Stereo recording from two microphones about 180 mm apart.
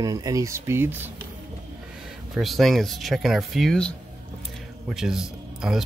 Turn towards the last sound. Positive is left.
turn(degrees=-5)  # may be behind; listen again after turning